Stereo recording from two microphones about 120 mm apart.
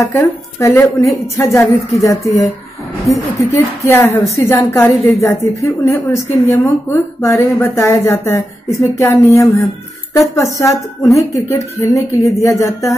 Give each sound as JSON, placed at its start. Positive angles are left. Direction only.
{"t": 0.0, "sound": "speech", "side_deg": 25}